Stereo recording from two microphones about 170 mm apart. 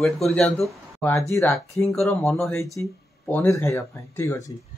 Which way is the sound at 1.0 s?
15° left (ahead or behind).